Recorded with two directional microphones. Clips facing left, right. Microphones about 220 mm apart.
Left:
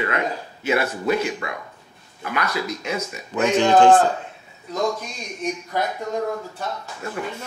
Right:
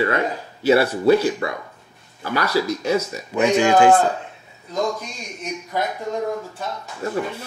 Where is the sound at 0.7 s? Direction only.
35° right (ahead or behind).